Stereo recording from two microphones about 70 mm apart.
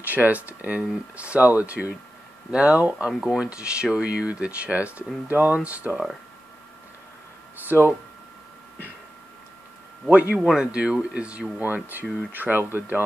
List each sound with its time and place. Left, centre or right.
0.0 s speech: right
3.1 s speech: centre
7.6 s speech: right
10.0 s speech: right
10.3 s speech: centre; by 13.0 s right